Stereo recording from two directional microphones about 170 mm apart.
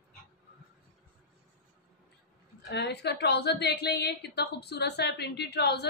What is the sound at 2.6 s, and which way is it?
A woman's voice, 80° left.